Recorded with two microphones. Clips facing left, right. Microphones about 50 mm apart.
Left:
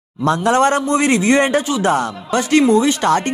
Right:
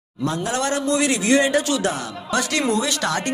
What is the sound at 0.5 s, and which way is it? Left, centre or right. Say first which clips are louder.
Speech: left 8 dB; left.